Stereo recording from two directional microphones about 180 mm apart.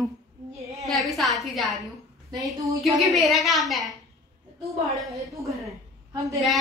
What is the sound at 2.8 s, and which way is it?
A woman's voice, centre (ahead or behind).